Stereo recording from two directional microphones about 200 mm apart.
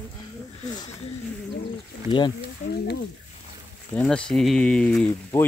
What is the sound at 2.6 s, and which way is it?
Speech, 40° left (ahead or behind).